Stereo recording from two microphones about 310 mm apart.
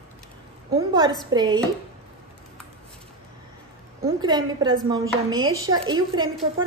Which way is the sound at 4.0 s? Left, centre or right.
Centre.